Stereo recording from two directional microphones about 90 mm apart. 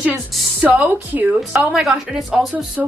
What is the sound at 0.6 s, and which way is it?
Speech, 20° right (ahead or behind).